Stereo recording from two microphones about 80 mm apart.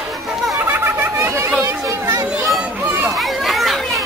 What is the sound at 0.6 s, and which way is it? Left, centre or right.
Snicker, right.